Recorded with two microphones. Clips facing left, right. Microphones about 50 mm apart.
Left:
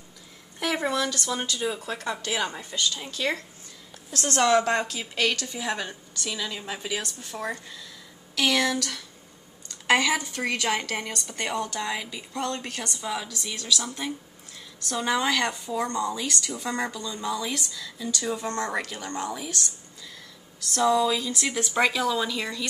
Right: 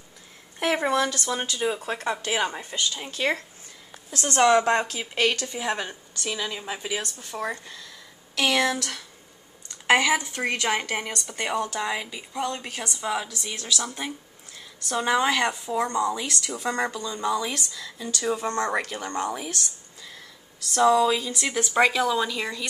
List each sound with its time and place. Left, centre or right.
0.6 s a woman's voice: right
4.2 s a woman's voice: centre
10.3 s a woman's voice: right
15.9 s a woman's voice: centre
20.7 s a woman's voice: centre